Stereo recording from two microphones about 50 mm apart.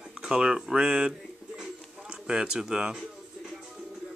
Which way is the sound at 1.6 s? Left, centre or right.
Centre.